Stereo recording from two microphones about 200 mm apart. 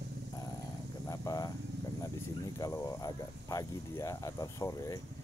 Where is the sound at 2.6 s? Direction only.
15° left (ahead or behind).